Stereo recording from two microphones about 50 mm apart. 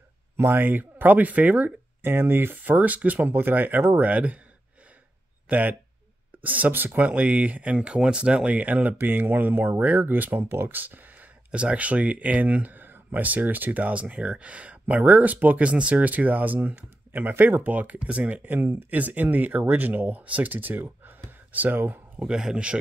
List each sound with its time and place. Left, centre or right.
0.4 s speech: right
2.0 s speech: right
3.3 s speech: right
5.5 s speech: right
12.7 s speech: right
17.9 s speech: right
18.3 s speech: right
22.2 s speech: centre